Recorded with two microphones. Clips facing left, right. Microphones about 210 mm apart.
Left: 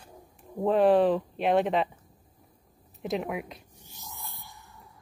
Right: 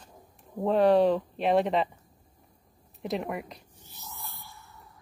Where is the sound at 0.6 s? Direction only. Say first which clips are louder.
Even; centre (ahead or behind).